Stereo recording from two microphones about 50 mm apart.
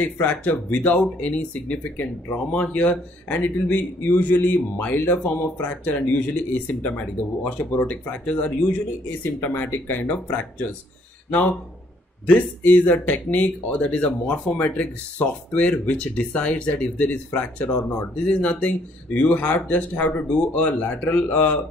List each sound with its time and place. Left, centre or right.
0.0 s speech: left
0.7 s speech: left
9.2 s speech: left
10.1 s speech: left